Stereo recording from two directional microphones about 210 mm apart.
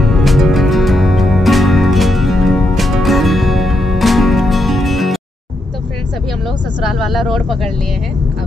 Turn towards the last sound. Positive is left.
turn(degrees=0)  # may be behind; listen again after turning